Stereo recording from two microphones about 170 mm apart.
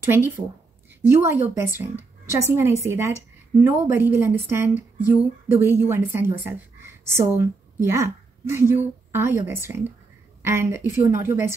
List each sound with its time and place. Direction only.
1.0 s a woman's voice: 15° right (ahead or behind)